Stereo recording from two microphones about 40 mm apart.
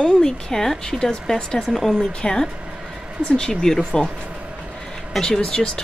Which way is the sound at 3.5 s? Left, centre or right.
Centre.